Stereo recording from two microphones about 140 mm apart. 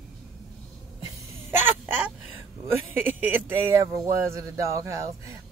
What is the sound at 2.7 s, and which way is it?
Speech, 15° right (ahead or behind).